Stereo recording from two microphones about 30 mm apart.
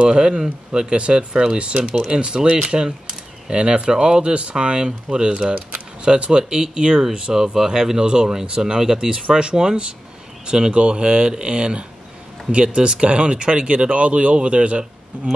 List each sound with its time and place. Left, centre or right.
0.1 s speech: right
1.7 s speech: right
2.0 s speech: right
13.9 s speech: right